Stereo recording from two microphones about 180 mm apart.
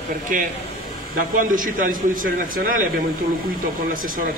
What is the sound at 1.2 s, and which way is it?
A man's voice, 50° right (ahead or behind).